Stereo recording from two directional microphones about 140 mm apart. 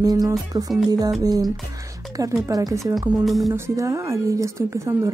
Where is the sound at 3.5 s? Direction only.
20° right (ahead or behind).